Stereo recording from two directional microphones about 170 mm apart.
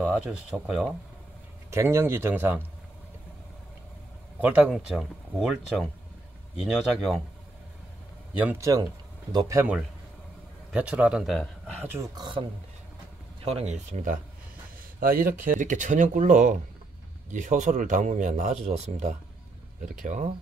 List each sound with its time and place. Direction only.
0.0 s speech: 5° right (ahead or behind)
1.7 s speech: 15° right (ahead or behind)
4.4 s speech: 10° right (ahead or behind)
8.4 s speech: 15° right (ahead or behind)
10.7 s a man's voice: 10° right (ahead or behind)
11.8 s speech: 15° right (ahead or behind)
12.2 s speech: 30° right (ahead or behind)
15.0 s speech: 60° right (ahead or behind)